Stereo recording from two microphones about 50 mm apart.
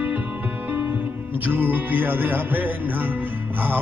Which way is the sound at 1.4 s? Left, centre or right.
Right.